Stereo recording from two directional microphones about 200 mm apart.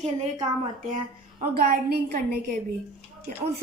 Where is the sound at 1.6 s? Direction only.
50° right (ahead or behind).